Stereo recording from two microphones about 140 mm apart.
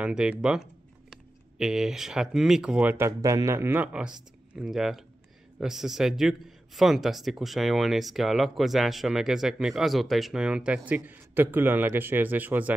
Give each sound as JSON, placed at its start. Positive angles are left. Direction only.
{"t": 0.0, "sound": "a man's voice", "side_deg": -5}
{"t": 3.1, "sound": "a man's voice", "side_deg": -25}